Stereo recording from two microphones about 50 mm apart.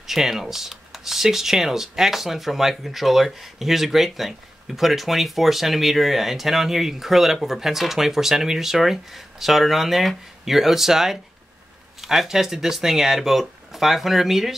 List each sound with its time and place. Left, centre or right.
0.0 s speech: centre